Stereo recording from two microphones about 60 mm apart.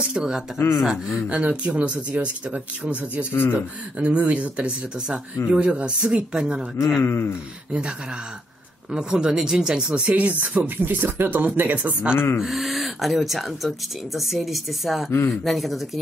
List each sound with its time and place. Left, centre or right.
0.1 s speech: centre
0.6 s speech: left
0.8 s speech: centre
1.3 s speech: centre
7.0 s speech: left
8.9 s speech: centre
12.4 s speech: centre
15.0 s speech: left
15.4 s speech: centre